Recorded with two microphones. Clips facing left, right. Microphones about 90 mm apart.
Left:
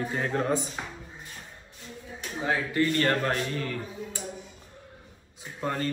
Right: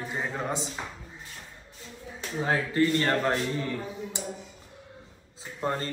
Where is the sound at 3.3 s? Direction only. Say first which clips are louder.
Right 2 dB; 20° right (ahead or behind).